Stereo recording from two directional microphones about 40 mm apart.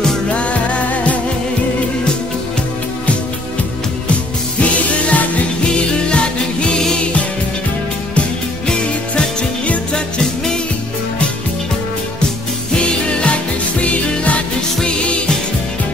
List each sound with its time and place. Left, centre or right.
0.3 s music: left
4.6 s music: left
5.7 s music: left
8.6 s music: left
12.7 s music: left